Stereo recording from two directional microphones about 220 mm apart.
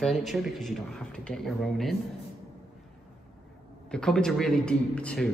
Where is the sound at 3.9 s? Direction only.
5° left (ahead or behind).